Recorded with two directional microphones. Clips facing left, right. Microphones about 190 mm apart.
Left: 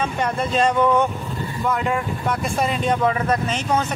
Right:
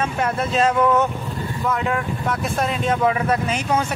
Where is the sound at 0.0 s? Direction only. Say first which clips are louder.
Even; 5° right (ahead or behind).